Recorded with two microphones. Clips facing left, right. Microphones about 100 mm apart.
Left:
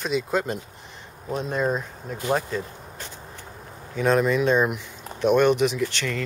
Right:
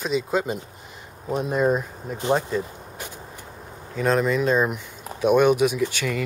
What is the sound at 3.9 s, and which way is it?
Speech, centre (ahead or behind).